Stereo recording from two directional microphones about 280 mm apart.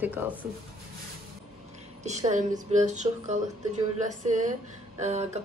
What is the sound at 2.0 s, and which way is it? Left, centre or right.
A woman's voice, right.